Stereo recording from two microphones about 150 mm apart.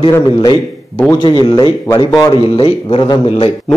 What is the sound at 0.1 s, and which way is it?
A man's voice, 25° left (ahead or behind).